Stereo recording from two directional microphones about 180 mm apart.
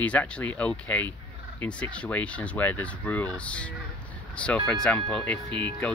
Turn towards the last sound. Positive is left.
turn(degrees=10)  # may be behind; listen again after turning